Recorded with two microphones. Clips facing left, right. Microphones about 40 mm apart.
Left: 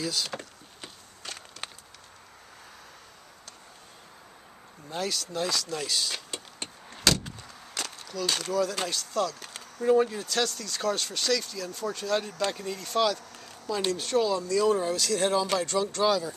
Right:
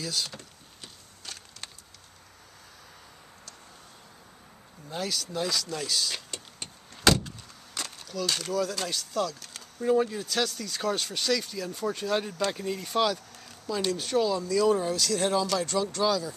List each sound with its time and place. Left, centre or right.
0.4 s wood: left
4.8 s speech: centre
7.1 s vehicle: centre
7.7 s a sound: centre
8.5 s speech: centre
9.8 s speech: centre
13.7 s speech: centre
13.9 s speech: centre